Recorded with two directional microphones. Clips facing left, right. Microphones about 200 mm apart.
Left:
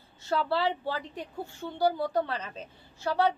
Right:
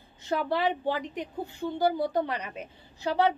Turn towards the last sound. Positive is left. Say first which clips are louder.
# right 1 dB
turn(degrees=-15)  # may be behind; listen again after turning